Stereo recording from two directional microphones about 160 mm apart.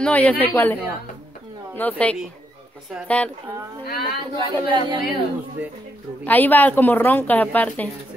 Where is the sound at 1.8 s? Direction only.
10° left (ahead or behind).